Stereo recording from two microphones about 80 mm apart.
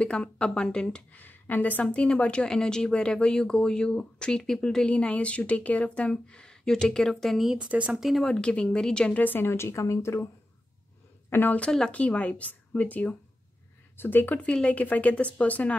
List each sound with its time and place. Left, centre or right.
0.0 s a woman's voice: centre
1.2 s a woman's voice: left; by 7.5 s centre
7.5 s speech: centre
8.0 s speech: centre
8.3 s a woman's voice: centre
9.2 s speech: left
11.2 s a woman's voice: left